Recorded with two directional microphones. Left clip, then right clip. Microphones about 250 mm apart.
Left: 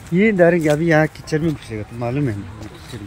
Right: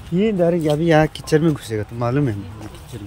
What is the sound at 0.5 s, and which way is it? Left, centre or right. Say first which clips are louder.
Speech: even; centre.